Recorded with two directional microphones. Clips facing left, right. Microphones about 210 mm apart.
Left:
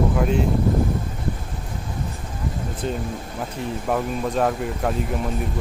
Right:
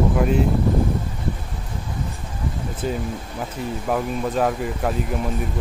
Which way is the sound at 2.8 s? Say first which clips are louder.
Right 2 dB; 5° right (ahead or behind).